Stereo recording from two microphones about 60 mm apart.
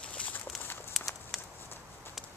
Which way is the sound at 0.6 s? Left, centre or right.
Left.